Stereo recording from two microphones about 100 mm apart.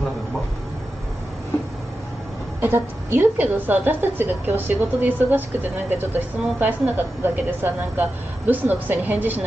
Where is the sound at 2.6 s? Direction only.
20° right (ahead or behind).